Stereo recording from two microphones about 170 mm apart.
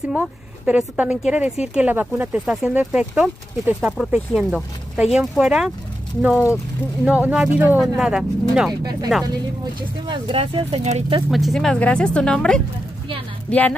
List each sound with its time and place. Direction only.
0.1 s speech: 5° right (ahead or behind)
10.0 s speech: 30° right (ahead or behind)
11.2 s speech: centre (ahead or behind)